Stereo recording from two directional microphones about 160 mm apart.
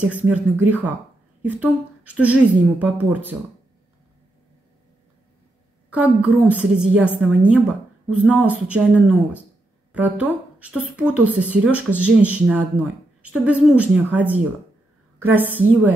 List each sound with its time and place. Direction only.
0.3 s a woman's voice: 10° right (ahead or behind)
5.9 s a woman's voice: 10° right (ahead or behind)
8.1 s a woman's voice: 10° right (ahead or behind)